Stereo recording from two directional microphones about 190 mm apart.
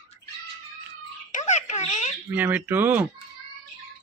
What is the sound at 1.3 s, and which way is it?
Wail, 35° left (ahead or behind).